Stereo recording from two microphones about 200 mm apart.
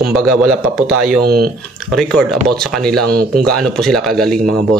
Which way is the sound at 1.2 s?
50° right (ahead or behind).